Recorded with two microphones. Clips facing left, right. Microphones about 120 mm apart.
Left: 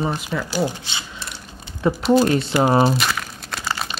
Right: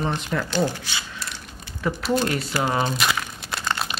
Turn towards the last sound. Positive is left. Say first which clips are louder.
# even
turn(degrees=0)  # may be behind; listen again after turning